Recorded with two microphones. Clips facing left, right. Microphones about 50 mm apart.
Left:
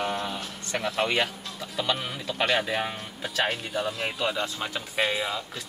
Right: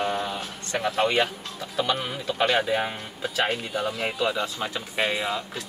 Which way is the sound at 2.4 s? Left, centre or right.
Right.